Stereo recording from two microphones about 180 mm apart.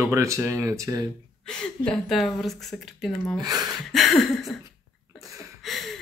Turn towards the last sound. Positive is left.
turn(degrees=0)  # may be behind; listen again after turning